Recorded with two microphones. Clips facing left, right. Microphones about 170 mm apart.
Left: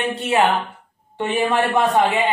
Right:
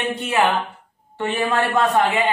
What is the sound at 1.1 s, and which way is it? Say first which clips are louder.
Speech: left 2 dB; 20° left (ahead or behind).